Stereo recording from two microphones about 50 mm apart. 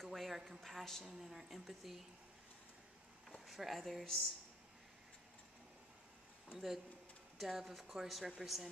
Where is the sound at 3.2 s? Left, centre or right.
Centre.